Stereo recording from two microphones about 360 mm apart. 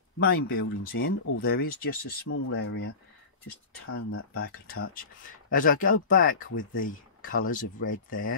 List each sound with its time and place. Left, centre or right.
0.2 s speech: left
1.2 s speech: left
6.5 s speech: left